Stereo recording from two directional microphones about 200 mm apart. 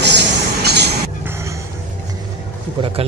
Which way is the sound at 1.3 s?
15° right (ahead or behind).